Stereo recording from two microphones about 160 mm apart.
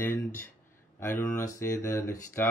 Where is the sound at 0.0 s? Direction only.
15° left (ahead or behind).